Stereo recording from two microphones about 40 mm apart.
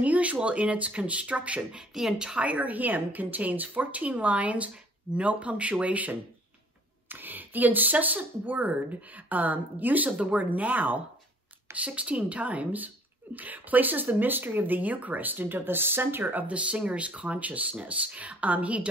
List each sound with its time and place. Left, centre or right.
0.0 s a sound: right
0.4 s speech: right
2.0 s speech: centre
2.3 s speech: right
7.1 s speech: right
11.7 s speech: right
16.4 s speech: right